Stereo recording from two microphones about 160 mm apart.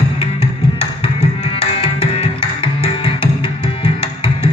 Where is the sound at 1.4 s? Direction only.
40° left (ahead or behind).